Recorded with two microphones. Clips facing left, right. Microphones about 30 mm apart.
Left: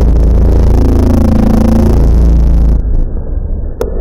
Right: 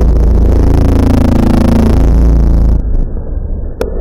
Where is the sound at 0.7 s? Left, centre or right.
Right.